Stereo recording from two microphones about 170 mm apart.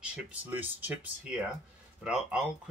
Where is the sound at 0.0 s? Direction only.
10° right (ahead or behind).